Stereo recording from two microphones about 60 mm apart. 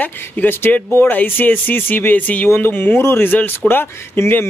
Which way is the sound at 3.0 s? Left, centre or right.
Left.